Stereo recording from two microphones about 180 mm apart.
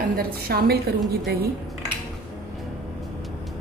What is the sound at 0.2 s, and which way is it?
A woman's voice, 60° right (ahead or behind).